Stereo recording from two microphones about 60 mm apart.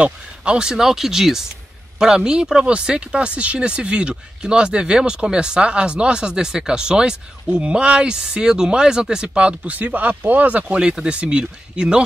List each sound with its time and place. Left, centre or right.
0.0 s speech: centre